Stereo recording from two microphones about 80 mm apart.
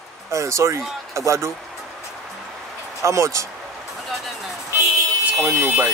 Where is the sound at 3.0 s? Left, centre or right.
Right.